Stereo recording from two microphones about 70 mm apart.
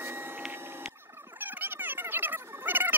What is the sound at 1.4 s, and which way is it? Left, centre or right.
Fowl, right.